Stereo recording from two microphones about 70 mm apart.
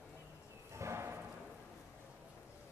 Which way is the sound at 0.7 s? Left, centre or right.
Right.